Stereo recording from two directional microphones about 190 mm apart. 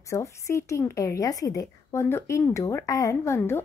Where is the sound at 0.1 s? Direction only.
15° left (ahead or behind).